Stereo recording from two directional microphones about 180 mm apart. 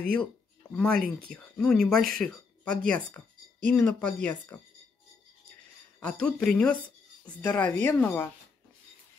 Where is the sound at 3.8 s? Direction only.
10° left (ahead or behind).